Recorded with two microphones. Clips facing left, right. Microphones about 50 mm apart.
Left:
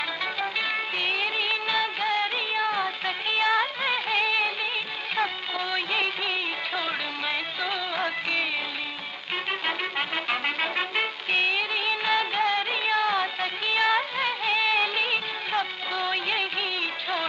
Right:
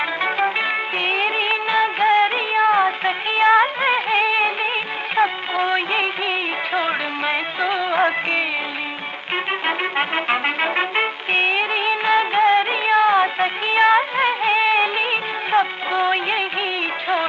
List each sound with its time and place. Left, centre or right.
0.2 s music: right
5.1 s music of bollywood: right
9.5 s music: right